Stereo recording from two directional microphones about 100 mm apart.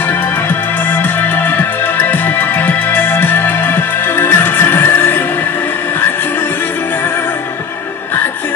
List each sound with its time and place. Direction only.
0.1 s music: 20° left (ahead or behind)